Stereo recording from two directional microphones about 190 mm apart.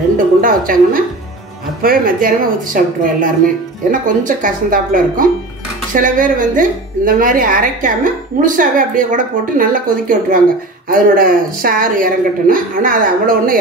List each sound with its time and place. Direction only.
0.4 s a woman's voice: 45° right (ahead or behind)